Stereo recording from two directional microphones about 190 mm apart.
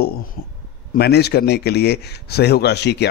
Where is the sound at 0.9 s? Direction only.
60° left (ahead or behind).